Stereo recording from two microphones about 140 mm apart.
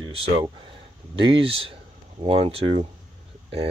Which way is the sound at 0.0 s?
30° right (ahead or behind).